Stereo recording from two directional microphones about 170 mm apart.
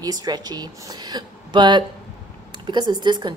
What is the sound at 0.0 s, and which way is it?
Speech, 25° right (ahead or behind).